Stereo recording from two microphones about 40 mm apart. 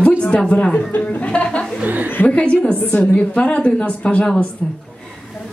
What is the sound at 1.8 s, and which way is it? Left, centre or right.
Speech, right.